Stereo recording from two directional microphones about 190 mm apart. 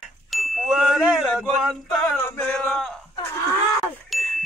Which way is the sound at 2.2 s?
5° left (ahead or behind).